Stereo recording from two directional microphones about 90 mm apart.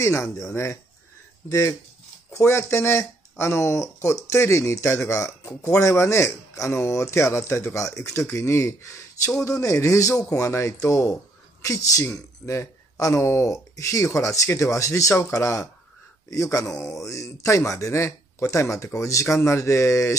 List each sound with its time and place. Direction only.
0.0 s speech: 30° left (ahead or behind)